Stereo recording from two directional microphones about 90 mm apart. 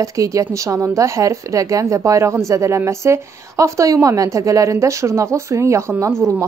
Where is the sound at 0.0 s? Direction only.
40° right (ahead or behind).